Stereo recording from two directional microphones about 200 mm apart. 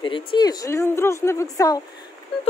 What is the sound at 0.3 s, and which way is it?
A woman's voice, 20° left (ahead or behind).